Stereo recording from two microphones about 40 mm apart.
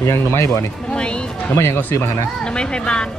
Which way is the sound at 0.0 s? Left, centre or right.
Left.